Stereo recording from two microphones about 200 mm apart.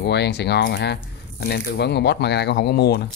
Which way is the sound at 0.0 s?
55° left (ahead or behind).